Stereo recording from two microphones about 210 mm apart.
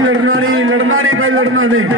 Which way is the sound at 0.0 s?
75° right (ahead or behind).